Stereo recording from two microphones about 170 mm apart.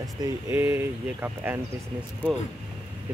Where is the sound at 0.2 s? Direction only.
15° right (ahead or behind).